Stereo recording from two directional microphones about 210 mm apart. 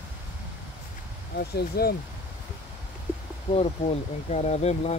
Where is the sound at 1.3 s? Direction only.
50° left (ahead or behind).